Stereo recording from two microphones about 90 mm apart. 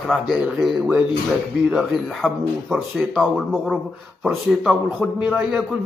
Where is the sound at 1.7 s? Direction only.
Centre (ahead or behind).